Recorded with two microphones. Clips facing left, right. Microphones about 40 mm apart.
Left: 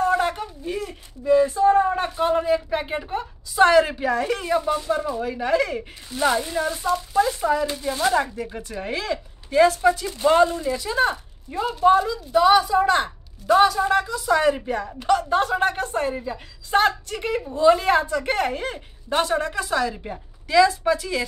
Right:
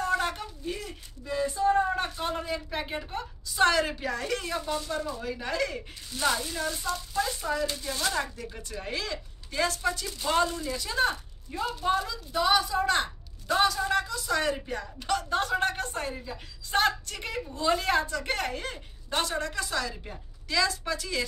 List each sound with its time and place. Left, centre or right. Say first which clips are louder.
0.0 s speech: left 7 dB; centre
6.0 s speech: left 7 dB; left